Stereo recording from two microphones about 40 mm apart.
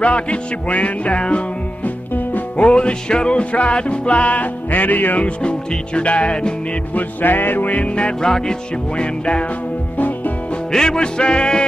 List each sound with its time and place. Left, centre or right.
0.0 s music: left
2.5 s music: left
5.4 s music: left
7.0 s music: left
8.2 s music: centre
9.0 s music: left
9.9 s music: left
10.7 s music: centre